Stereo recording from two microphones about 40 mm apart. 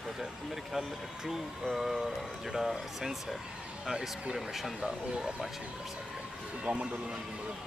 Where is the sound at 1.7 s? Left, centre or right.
Centre.